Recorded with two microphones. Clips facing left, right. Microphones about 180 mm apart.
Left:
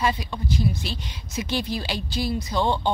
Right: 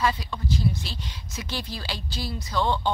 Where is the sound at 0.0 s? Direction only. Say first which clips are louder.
Left 1 dB; 20° left (ahead or behind).